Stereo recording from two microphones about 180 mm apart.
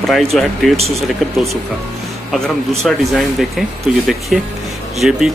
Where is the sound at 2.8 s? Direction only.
Centre (ahead or behind).